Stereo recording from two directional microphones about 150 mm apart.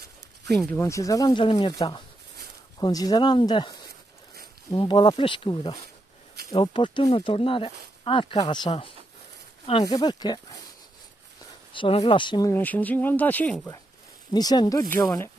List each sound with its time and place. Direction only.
0.7 s speech: 20° left (ahead or behind)
11.7 s speech: 35° left (ahead or behind)
12.5 s speech: 10° left (ahead or behind)
14.3 s speech: 25° left (ahead or behind)